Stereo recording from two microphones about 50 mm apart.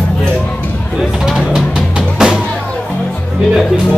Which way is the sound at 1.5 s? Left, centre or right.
Centre.